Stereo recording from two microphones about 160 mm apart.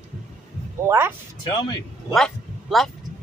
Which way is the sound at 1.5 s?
25° left (ahead or behind).